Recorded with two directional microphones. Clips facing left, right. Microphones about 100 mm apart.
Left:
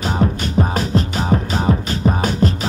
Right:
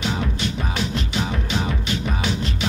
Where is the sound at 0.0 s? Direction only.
40° left (ahead or behind).